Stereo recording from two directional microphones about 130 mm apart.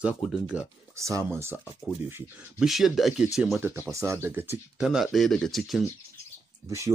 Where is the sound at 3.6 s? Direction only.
20° right (ahead or behind).